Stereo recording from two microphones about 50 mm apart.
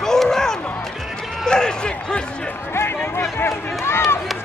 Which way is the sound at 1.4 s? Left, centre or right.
Centre.